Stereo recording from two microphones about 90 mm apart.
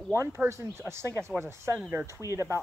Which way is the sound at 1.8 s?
10° right (ahead or behind).